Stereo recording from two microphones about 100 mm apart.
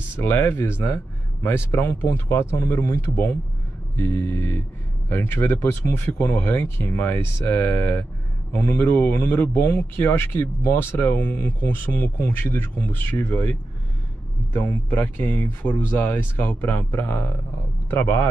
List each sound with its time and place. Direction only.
0.2 s a man's voice: 20° left (ahead or behind)